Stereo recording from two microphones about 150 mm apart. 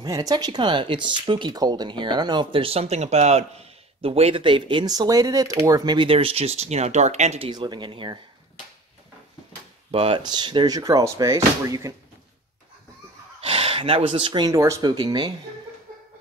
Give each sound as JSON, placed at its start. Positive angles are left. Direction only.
{"t": 0.0, "sound": "speech", "side_deg": -25}
{"t": 9.8, "sound": "speech", "side_deg": -40}
{"t": 13.5, "sound": "speech", "side_deg": -40}
{"t": 14.5, "sound": "speech", "side_deg": -20}
{"t": 15.9, "sound": "a sound", "side_deg": -65}